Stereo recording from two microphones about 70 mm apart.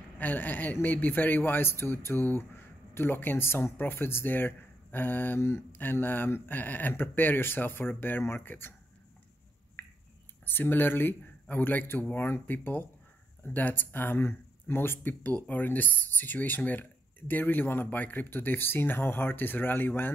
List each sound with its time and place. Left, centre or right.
0.2 s speech: left
9.8 s a sound: left
10.4 s speech: left